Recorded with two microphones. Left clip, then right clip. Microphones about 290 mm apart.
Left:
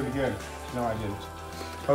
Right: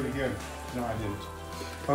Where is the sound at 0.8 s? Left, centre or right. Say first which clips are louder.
Left 4 dB; centre.